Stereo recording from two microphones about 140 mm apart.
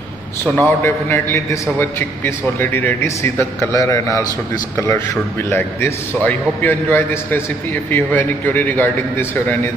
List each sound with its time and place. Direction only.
0.6 s a man's voice: 15° left (ahead or behind)